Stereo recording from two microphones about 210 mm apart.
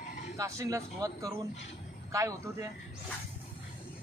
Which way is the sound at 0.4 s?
15° right (ahead or behind).